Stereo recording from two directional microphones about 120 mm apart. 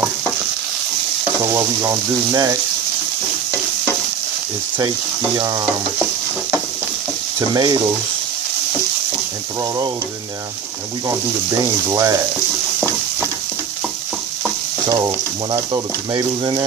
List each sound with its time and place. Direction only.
1.4 s frying: 20° right (ahead or behind)
4.7 s frying: 35° right (ahead or behind)
7.3 s frying: 35° right (ahead or behind)
11.9 s frying: 30° right (ahead or behind)
14.9 s frying: 20° right (ahead or behind)
16.1 s frying: 35° right (ahead or behind)